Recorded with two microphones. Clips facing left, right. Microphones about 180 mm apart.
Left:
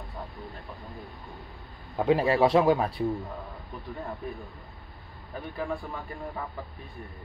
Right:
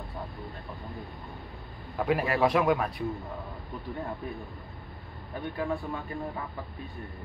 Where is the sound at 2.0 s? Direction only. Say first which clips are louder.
Left 4 dB; 25° left (ahead or behind).